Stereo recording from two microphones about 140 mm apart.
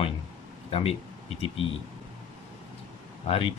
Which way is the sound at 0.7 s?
40° left (ahead or behind).